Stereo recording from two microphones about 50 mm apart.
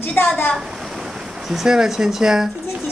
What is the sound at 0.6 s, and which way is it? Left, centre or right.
Speech, centre.